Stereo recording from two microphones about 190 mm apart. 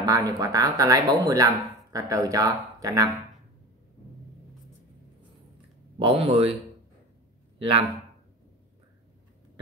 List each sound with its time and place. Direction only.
0.0 s speech: 20° right (ahead or behind)
5.9 s speech: 30° right (ahead or behind)